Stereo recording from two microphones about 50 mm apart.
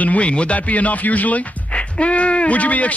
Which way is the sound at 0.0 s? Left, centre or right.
Left.